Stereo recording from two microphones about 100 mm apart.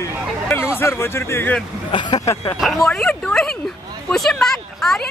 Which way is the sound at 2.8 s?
10° left (ahead or behind).